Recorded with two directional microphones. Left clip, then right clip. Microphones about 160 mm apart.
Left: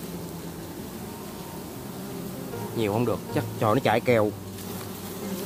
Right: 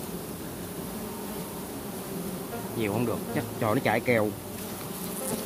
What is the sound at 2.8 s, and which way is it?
Speech, 55° left (ahead or behind).